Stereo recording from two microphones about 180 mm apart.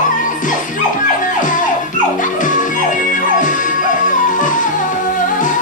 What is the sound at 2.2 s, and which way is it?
Music, 45° left (ahead or behind).